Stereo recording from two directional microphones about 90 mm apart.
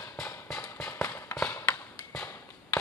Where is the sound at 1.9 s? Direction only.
10° left (ahead or behind).